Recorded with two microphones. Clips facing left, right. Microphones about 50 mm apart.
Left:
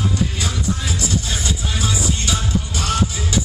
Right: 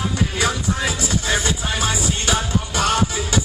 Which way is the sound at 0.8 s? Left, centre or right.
Right.